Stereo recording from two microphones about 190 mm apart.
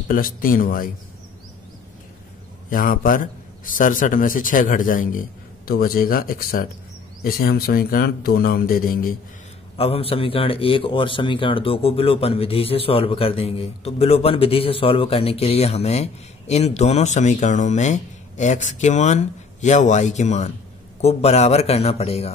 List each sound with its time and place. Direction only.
0.1 s a man's voice: 45° left (ahead or behind)
2.7 s a man's voice: 45° left (ahead or behind)
9.8 s a man's voice: 30° left (ahead or behind)